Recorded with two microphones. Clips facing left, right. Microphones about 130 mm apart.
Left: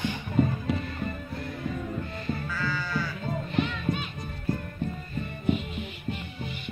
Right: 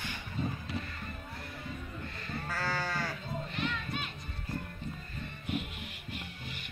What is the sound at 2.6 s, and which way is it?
Sheep, 85° right.